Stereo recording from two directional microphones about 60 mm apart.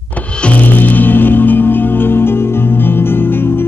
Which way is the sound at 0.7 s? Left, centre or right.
Left.